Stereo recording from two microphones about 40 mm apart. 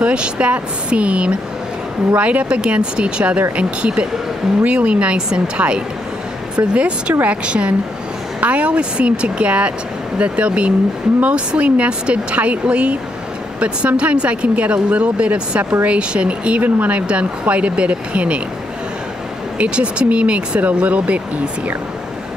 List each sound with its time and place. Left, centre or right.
0.0 s speech: right
19.6 s speech: right